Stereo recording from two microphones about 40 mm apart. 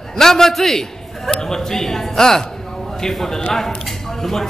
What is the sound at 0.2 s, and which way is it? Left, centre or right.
A man's voice, centre.